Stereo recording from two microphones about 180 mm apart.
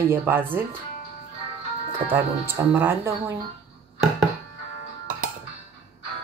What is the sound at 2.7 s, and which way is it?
Speech, 10° right (ahead or behind).